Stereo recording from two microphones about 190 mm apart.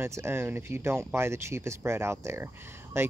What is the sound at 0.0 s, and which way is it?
Speech, 15° right (ahead or behind).